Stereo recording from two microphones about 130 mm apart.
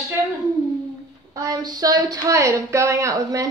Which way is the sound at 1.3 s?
25° right (ahead or behind).